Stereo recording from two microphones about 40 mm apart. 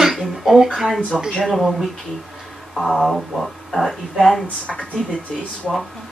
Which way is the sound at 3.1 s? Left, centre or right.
Centre.